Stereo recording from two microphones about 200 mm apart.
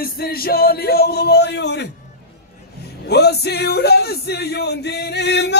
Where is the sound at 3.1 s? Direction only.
55° left (ahead or behind).